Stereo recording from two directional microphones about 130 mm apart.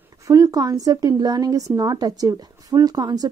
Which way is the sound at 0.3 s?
25° right (ahead or behind).